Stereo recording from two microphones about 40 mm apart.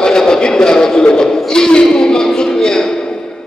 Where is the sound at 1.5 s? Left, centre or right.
Centre.